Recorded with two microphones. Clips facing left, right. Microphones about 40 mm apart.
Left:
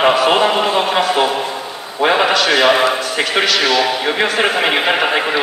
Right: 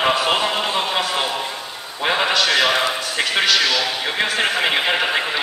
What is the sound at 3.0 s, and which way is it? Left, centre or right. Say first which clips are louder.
A man's voice: left 4 dB; centre.